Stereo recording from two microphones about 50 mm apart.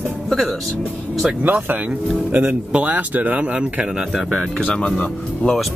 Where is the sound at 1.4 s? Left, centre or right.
Right; by 4.3 s centre.